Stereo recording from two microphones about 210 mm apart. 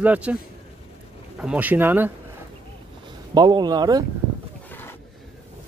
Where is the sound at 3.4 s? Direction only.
20° right (ahead or behind).